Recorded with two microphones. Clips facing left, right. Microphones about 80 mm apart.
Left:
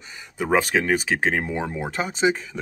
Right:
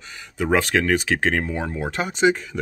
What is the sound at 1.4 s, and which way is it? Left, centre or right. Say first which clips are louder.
Speech: right 1 dB; centre.